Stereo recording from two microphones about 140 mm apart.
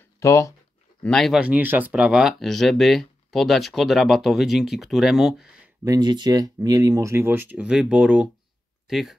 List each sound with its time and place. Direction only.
0.2 s speech: 20° left (ahead or behind)
1.0 s speech: 5° left (ahead or behind)
1.4 s speech: 10° right (ahead or behind)
5.9 s speech: 30° right (ahead or behind); by 9.1 s centre (ahead or behind)